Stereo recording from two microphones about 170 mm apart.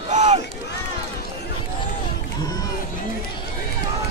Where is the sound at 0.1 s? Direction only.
40° right (ahead or behind).